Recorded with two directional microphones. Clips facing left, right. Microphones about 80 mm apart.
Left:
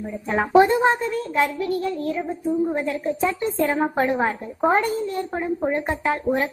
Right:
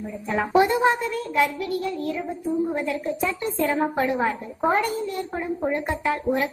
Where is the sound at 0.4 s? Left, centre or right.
Left.